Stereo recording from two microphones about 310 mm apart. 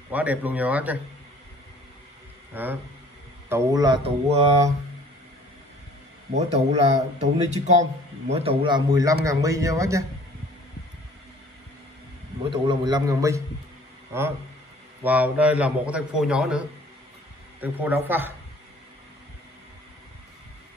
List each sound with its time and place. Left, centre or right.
0.1 s a man's voice: centre
2.5 s a man's voice: centre
6.3 s a man's voice: right
12.4 s a man's voice: centre
15.0 s a man's voice: centre